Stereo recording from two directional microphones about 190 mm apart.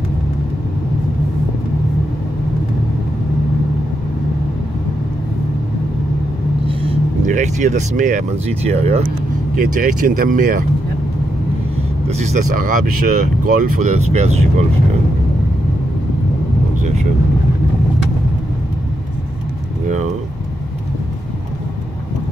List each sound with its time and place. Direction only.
6.7 s vehicle: 30° right (ahead or behind)
7.2 s speech: 40° right (ahead or behind)
9.6 s speech: 45° right (ahead or behind)
12.1 s speech: 40° right (ahead or behind)